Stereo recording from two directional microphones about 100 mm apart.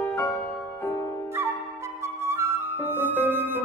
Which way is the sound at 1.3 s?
25° right (ahead or behind).